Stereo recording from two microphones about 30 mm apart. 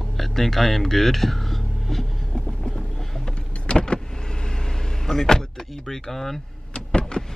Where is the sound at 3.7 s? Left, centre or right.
Left.